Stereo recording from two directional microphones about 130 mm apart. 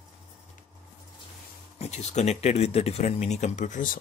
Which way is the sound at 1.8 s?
60° left (ahead or behind).